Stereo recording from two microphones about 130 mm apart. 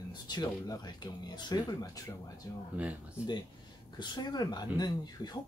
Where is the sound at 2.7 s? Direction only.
10° right (ahead or behind).